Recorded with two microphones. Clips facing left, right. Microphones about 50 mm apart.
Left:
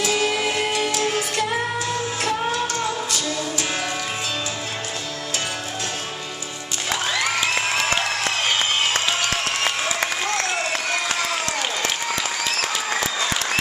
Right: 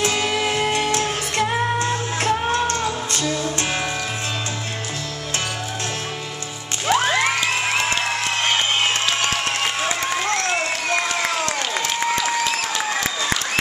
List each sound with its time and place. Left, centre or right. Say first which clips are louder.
0.0 s music: even; right
6.9 s music: right 5 dB; right